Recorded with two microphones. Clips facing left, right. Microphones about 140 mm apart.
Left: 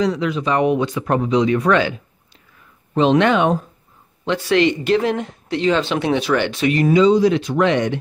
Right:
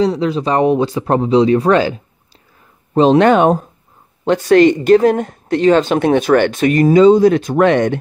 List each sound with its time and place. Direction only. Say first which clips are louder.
0.0 s speech: right 4 dB; 30° right (ahead or behind); by 8.0 s 50° right (ahead or behind)